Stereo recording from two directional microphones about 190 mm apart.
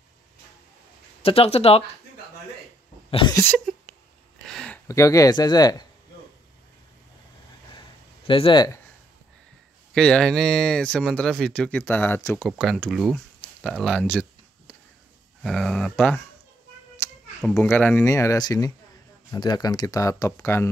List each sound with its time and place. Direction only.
1.2 s speech: 30° left (ahead or behind)
3.1 s a sound: 25° left (ahead or behind)
3.3 s a sound: 10° left (ahead or behind)
4.8 s speech: 15° left (ahead or behind)
8.3 s speech: 25° left (ahead or behind)
9.9 s speech: 5° left (ahead or behind)
12.4 s speech: centre (ahead or behind)
15.4 s speech: centre (ahead or behind)
17.6 s speech: 10° left (ahead or behind)